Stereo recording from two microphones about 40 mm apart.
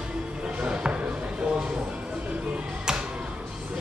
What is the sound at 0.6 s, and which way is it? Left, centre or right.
Basketball bounce, right.